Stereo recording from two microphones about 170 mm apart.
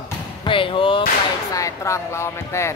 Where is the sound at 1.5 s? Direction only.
20° left (ahead or behind).